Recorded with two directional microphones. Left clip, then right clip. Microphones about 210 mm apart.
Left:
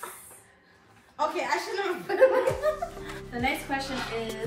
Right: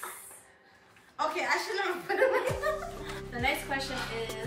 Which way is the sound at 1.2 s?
10° left (ahead or behind).